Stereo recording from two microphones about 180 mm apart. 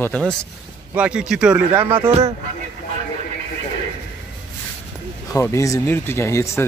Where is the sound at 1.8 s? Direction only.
30° right (ahead or behind).